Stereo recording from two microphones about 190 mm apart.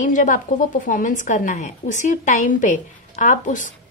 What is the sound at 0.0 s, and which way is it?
Speech, 45° left (ahead or behind).